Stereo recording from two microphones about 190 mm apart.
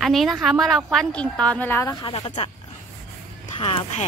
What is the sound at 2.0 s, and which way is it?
Speech, 30° left (ahead or behind).